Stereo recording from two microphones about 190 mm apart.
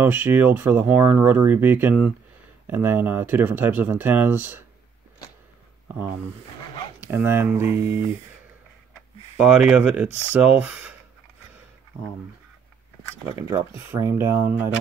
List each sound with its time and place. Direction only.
0.0 s speech: 10° right (ahead or behind)
7.0 s speech: 10° right (ahead or behind)
9.4 s speech: 5° right (ahead or behind)
13.2 s speech: 15° right (ahead or behind)